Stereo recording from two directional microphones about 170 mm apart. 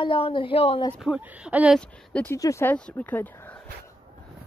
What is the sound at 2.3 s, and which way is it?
Speech, 15° left (ahead or behind).